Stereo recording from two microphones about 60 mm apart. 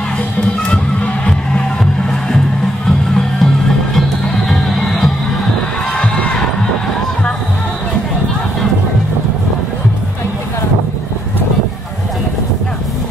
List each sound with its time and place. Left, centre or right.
0.4 s music: centre
4.5 s music: centre
5.9 s heart sounds: centre